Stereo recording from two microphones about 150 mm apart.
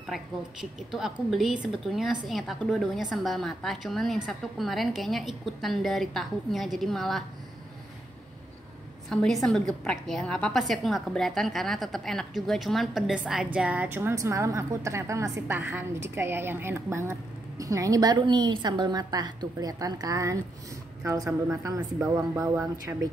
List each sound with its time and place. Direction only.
0.0 s a woman's voice: centre (ahead or behind)
9.1 s a woman's voice: centre (ahead or behind); by 23.0 s 20° right (ahead or behind)